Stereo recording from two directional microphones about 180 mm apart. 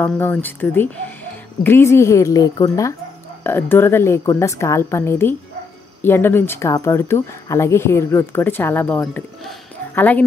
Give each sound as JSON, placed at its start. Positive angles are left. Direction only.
{"t": 0.0, "sound": "speech", "side_deg": 10}